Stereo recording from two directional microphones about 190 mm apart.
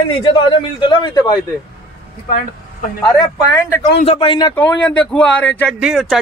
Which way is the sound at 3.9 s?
30° left (ahead or behind).